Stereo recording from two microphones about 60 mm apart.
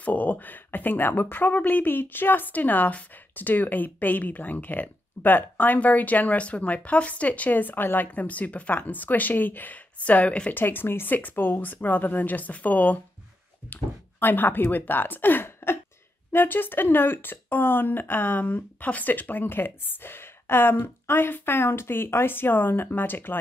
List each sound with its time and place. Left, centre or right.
0.0 s speech: left
10.5 s speech: left
14.2 s a woman's voice: left